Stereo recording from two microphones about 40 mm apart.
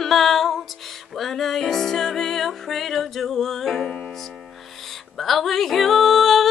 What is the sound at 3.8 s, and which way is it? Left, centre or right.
Music, centre.